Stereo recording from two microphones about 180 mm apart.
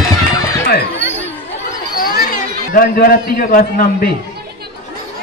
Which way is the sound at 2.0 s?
55° left (ahead or behind).